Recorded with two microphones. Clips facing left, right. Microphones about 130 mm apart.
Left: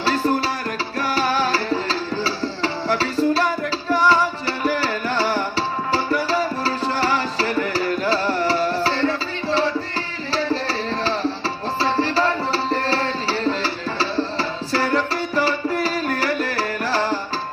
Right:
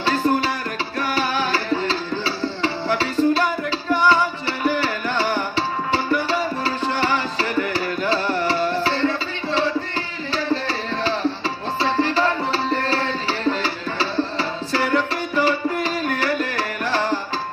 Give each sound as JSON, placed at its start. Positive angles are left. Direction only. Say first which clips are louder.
{"t": 0.0, "sound": "music", "louder": "even", "side_deg": 35}